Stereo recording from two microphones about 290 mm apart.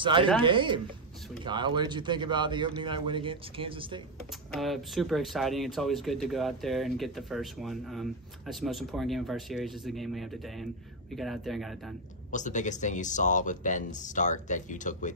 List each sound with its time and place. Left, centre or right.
0.0 s a man's voice: centre
4.5 s speech: centre
12.3 s speech: left